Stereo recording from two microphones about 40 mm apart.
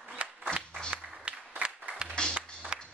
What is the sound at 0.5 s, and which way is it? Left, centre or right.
Clapping, left.